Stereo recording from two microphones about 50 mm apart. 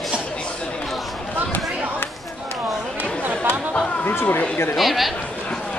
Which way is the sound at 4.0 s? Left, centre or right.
Left.